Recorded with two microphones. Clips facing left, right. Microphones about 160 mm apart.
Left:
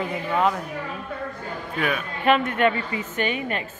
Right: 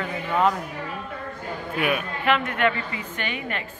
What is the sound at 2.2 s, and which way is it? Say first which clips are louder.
Speech: left 3 dB; 25° left (ahead or behind).